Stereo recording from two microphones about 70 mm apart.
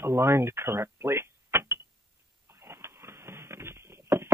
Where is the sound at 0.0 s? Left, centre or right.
Right.